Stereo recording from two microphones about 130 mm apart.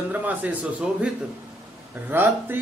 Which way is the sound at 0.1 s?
10° right (ahead or behind).